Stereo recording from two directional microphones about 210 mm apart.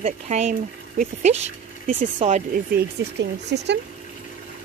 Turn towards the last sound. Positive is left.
turn(degrees=-55)  # may be behind; listen again after turning